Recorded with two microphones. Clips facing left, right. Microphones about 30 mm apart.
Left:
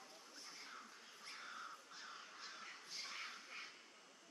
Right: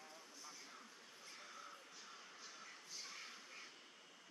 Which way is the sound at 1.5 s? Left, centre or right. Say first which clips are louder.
Left 3 dB; left.